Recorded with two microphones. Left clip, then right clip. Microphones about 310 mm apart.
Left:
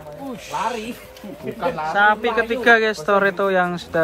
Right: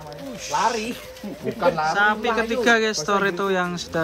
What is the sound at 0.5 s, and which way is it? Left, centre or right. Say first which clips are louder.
Speech: right 3 dB; right.